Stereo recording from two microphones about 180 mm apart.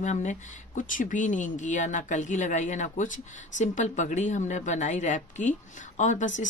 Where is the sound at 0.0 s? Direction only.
40° left (ahead or behind).